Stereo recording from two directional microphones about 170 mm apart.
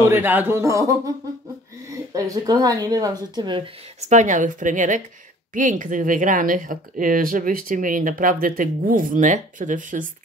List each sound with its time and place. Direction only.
0.0 s a man's voice: 10° right (ahead or behind)
2.1 s speech: 20° right (ahead or behind)
4.1 s speech: 45° right (ahead or behind)